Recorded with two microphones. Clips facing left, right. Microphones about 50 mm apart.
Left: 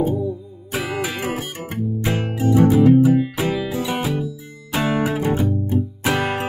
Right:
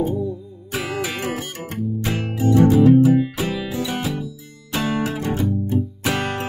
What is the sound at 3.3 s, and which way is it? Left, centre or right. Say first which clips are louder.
Music: left 2 dB; left.